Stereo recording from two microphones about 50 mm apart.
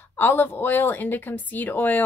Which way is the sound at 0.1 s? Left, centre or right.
Left.